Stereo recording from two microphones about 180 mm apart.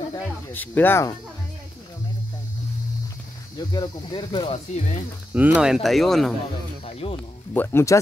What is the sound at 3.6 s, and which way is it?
Speech, 25° left (ahead or behind).